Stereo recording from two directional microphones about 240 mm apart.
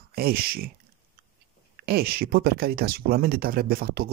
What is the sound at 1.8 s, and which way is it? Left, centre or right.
Speech, right.